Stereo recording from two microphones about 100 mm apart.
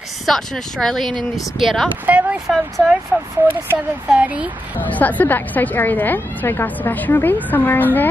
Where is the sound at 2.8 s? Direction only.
5° right (ahead or behind).